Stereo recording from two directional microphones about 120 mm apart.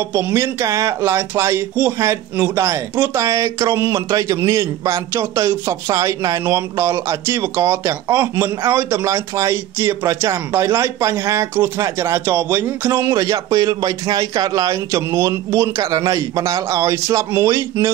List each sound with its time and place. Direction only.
0.1 s speech: 20° right (ahead or behind)